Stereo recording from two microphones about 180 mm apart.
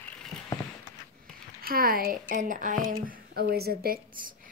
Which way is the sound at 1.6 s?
55° right (ahead or behind).